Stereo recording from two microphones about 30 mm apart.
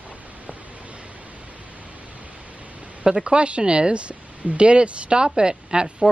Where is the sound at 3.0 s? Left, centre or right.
Right.